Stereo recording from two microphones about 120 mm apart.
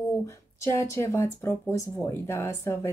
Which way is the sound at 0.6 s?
25° left (ahead or behind).